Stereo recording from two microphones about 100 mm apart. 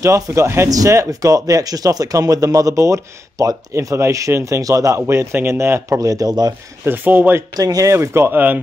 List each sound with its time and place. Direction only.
0.0 s speech: 30° right (ahead or behind)
6.8 s speech: 20° right (ahead or behind)
7.5 s speech: 35° right (ahead or behind); by 8.5 s 15° right (ahead or behind)